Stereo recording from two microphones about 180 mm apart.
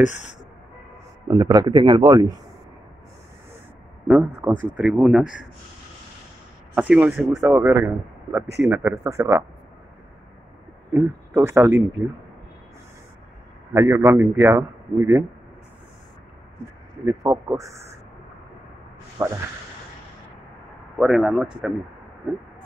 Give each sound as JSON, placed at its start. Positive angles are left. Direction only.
{"t": 0.0, "sound": "speech", "side_deg": 40}
{"t": 1.2, "sound": "a man's voice", "side_deg": -20}
{"t": 4.1, "sound": "speech", "side_deg": -5}
{"t": 6.7, "sound": "speech", "side_deg": -10}
{"t": 10.9, "sound": "speech", "side_deg": -10}
{"t": 13.7, "sound": "speech", "side_deg": -15}
{"t": 17.0, "sound": "speech", "side_deg": -15}
{"t": 19.2, "sound": "a man's voice", "side_deg": -20}
{"t": 21.0, "sound": "speech", "side_deg": 0}